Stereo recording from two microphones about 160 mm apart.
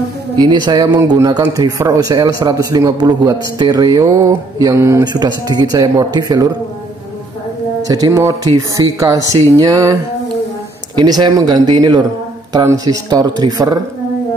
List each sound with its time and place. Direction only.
0.4 s a man's voice: 25° right (ahead or behind)
7.8 s a man's voice: 25° right (ahead or behind)
9.6 s a sound: 20° right (ahead or behind)
11.0 s a man's voice: 25° right (ahead or behind)